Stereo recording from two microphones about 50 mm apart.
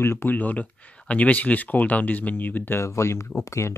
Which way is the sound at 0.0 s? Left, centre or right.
Left.